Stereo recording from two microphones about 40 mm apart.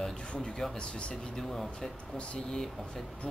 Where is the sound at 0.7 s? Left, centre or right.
Left.